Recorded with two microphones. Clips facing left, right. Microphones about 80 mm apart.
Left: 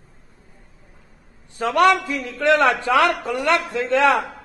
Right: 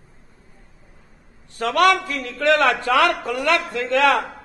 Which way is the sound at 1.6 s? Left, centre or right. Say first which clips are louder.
Left 1 dB; centre.